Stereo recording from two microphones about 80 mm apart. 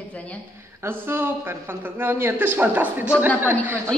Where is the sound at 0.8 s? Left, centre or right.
Right.